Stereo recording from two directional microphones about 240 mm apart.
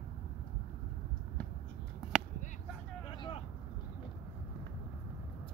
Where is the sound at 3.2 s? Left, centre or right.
Left.